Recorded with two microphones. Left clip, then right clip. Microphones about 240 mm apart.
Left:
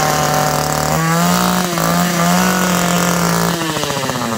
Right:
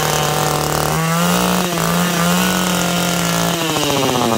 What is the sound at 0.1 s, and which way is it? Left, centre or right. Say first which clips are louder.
Vehicle: left 2 dB; centre.